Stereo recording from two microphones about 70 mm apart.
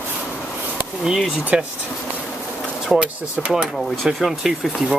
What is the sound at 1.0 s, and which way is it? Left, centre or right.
Speech, centre.